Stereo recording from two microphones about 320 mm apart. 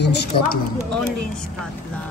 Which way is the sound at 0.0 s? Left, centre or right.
Left.